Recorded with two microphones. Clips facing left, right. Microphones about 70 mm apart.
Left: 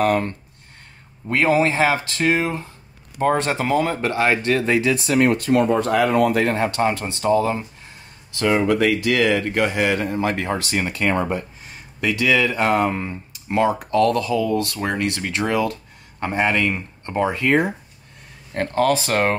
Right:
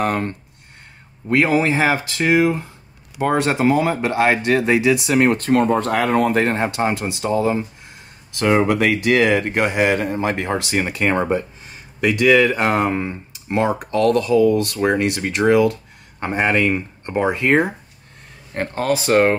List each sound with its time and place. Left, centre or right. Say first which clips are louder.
0.0 s speech: left 2 dB; right
1.3 s speech: right 1 dB; centre
5.1 s speech: left 1 dB; right
6.6 s speech: even; centre
8.4 s speech: right 2 dB; right
12.4 s speech: right 1 dB; centre
13.9 s speech: right 4 dB; right
18.7 s speech: right 1 dB; centre